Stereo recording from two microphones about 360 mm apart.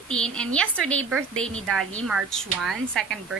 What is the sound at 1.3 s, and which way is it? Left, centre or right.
Speech, right.